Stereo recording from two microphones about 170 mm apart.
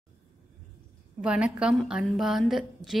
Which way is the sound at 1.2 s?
5° right (ahead or behind).